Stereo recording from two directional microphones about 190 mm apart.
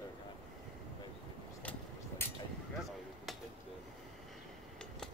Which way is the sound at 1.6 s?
5° left (ahead or behind).